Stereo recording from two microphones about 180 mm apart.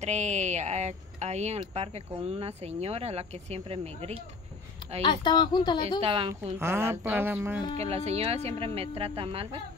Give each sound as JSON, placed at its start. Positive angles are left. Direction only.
{"t": 0.0, "sound": "speech", "side_deg": -40}
{"t": 5.0, "sound": "speech", "side_deg": 25}
{"t": 5.9, "sound": "speech", "side_deg": -30}
{"t": 6.6, "sound": "speech", "side_deg": -15}
{"t": 7.7, "sound": "speech", "side_deg": -35}